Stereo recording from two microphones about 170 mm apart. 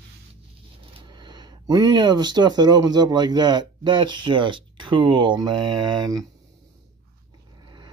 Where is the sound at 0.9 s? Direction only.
25° right (ahead or behind).